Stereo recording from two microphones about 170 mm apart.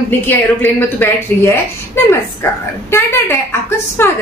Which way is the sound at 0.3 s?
10° left (ahead or behind).